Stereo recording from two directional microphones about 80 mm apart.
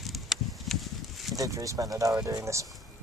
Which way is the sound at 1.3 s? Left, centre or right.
Right.